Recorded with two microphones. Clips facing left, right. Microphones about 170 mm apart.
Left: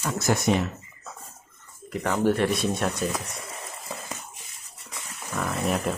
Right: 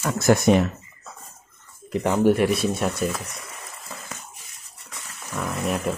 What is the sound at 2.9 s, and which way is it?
Speech, 15° left (ahead or behind).